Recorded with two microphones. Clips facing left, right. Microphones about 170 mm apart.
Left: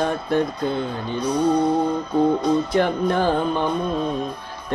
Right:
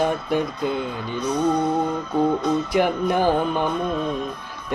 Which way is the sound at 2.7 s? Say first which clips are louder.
Even; 15° right (ahead or behind).